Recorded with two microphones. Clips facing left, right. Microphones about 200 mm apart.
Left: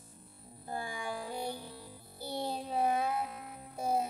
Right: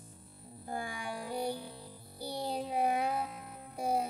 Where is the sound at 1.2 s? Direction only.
15° right (ahead or behind).